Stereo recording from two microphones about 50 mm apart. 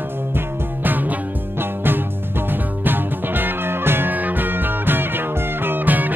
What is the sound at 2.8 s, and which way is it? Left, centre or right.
Music, right.